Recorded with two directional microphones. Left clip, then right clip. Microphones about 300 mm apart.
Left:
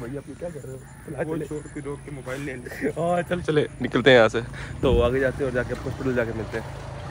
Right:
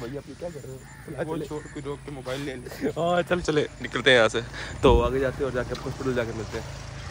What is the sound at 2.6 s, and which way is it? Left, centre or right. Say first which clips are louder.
Speech: left 1 dB; centre.